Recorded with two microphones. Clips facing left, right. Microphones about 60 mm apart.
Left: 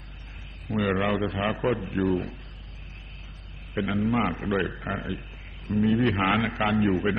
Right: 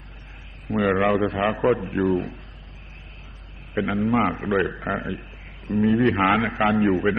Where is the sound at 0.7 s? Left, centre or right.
Centre.